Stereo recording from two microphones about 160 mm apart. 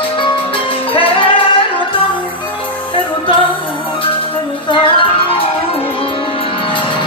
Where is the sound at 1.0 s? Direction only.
35° left (ahead or behind).